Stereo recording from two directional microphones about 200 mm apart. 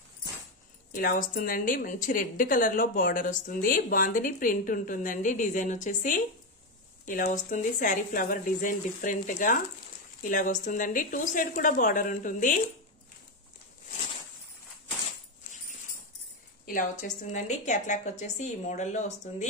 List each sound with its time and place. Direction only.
0.9 s a woman's voice: 45° left (ahead or behind)
16.6 s a woman's voice: 40° left (ahead or behind)